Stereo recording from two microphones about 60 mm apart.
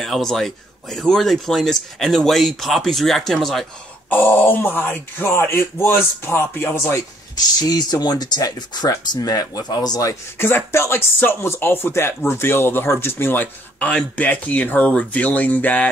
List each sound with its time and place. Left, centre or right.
0.0 s speech: centre
4.1 s speech: left
7.6 s speech: left
10.3 s speech: left
10.7 s speech: left